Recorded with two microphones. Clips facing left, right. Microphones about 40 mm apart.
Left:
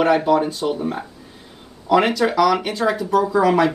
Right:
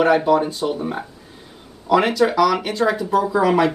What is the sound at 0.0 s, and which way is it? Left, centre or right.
Speech, centre.